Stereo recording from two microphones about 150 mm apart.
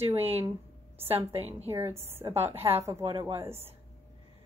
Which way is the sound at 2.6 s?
40° right (ahead or behind).